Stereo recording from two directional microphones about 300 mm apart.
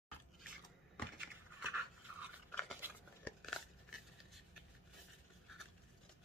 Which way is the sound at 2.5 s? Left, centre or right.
Centre.